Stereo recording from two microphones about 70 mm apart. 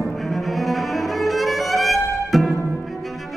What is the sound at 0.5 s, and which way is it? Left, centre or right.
Music, centre.